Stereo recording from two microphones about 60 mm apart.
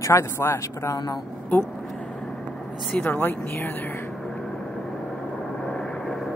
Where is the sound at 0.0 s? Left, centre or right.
Left.